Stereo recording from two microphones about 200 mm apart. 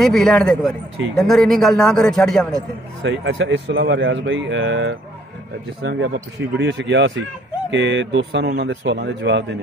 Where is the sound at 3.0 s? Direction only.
65° right (ahead or behind).